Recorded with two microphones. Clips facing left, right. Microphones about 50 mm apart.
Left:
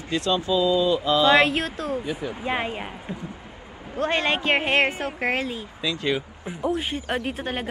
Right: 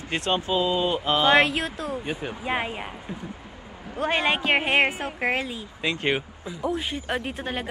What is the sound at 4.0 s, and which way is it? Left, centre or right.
A woman's voice, centre.